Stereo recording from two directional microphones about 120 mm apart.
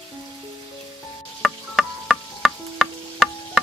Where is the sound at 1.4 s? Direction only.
Centre (ahead or behind).